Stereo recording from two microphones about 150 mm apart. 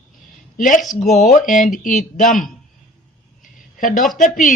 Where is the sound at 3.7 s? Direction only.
60° left (ahead or behind).